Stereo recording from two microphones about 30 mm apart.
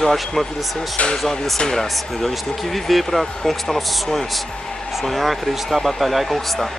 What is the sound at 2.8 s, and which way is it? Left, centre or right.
Speech, centre.